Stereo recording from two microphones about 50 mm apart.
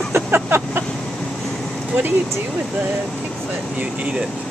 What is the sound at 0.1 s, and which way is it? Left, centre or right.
Vehicle, right.